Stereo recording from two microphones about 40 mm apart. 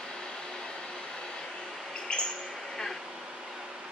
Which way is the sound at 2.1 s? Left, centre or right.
Left.